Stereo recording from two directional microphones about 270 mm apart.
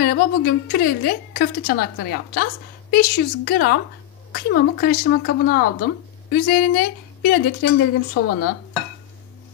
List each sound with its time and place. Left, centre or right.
0.0 s a woman's voice: left